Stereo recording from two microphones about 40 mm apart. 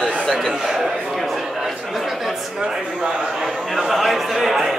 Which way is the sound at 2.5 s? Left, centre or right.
Centre.